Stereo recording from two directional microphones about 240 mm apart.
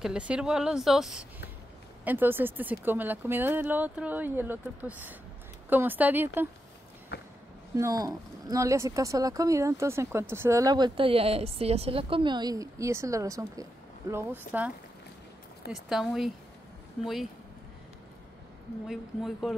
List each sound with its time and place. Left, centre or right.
0.0 s a woman's voice: centre
7.1 s a sound: left
7.7 s speech: centre
15.7 s a woman's voice: centre
18.9 s a woman's voice: centre